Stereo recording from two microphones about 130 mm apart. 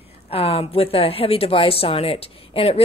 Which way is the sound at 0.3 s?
50° left (ahead or behind).